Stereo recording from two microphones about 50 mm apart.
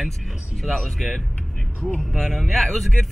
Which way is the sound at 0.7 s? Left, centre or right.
Centre.